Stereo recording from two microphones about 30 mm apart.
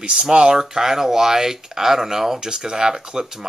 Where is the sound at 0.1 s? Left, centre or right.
Right.